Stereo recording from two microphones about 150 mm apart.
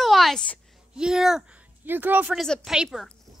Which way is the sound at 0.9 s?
5° right (ahead or behind).